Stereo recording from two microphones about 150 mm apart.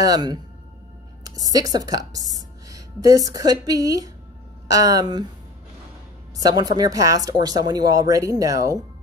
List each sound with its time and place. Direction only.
0.0 s a woman's voice: 25° right (ahead or behind)
6.3 s a woman's voice: 25° right (ahead or behind)